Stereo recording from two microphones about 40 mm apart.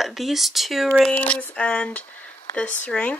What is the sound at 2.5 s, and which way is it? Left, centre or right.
Speech, left.